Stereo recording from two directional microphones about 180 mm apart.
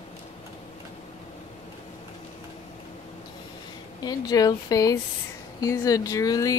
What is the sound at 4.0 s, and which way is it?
Speech, 20° left (ahead or behind).